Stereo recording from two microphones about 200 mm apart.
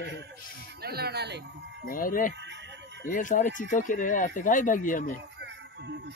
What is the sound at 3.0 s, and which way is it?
Speech, 40° left (ahead or behind).